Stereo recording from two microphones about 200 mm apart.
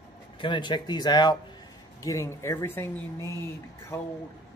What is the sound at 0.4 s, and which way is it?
Speech, 25° left (ahead or behind).